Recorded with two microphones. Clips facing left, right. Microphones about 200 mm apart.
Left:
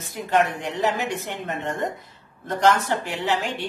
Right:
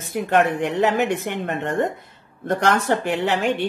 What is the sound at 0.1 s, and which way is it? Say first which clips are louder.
Speech: right 3 dB; 60° right (ahead or behind).